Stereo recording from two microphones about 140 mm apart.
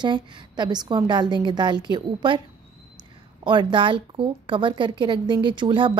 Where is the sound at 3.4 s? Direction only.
35° right (ahead or behind).